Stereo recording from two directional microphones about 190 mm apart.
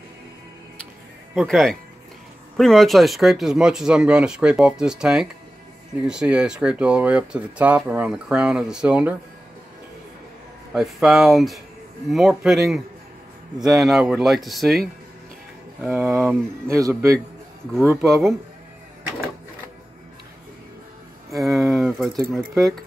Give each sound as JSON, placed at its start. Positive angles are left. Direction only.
{"t": 1.3, "sound": "speech", "side_deg": 0}
{"t": 10.7, "sound": "speech", "side_deg": 0}
{"t": 15.8, "sound": "speech", "side_deg": -5}
{"t": 18.0, "sound": "speech", "side_deg": 0}
{"t": 21.3, "sound": "a sound", "side_deg": 0}
{"t": 22.2, "sound": "speech", "side_deg": 0}